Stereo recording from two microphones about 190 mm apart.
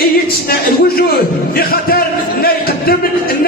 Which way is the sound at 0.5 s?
50° left (ahead or behind).